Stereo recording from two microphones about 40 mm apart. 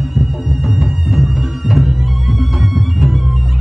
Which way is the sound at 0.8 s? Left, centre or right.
Centre.